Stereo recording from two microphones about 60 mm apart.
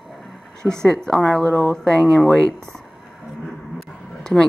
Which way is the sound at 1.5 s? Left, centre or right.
Left.